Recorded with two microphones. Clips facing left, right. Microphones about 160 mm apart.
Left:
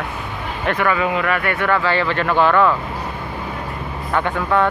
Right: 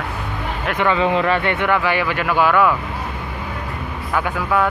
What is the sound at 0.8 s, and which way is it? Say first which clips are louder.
Speech: right 3 dB; 25° right (ahead or behind).